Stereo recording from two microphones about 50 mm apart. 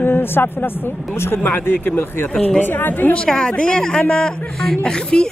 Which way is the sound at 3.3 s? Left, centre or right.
Centre.